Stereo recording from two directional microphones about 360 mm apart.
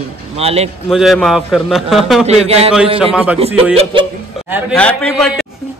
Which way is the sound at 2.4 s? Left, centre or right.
Centre.